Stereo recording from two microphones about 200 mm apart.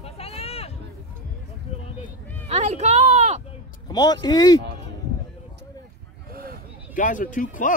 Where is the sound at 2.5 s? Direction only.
35° right (ahead or behind).